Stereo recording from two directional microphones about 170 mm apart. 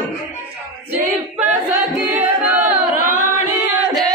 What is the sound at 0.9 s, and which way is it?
Choir, 10° right (ahead or behind).